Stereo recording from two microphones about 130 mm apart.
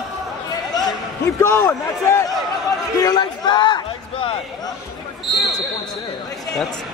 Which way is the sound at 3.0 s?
30° left (ahead or behind).